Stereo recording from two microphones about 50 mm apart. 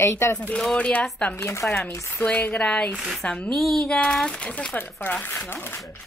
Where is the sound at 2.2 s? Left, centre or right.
Left.